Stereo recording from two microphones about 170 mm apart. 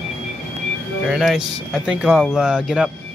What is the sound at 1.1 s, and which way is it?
Speech, centre (ahead or behind).